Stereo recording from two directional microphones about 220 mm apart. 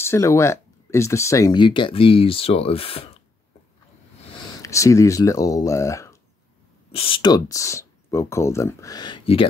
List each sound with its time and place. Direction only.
0.0 s speech: 10° left (ahead or behind)
4.4 s speech: 15° left (ahead or behind)
6.9 s speech: 25° left (ahead or behind)